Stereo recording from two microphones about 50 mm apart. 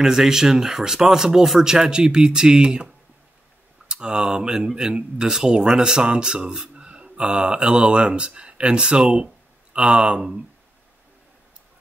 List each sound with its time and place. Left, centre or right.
0.0 s speech: centre
3.9 s speech: centre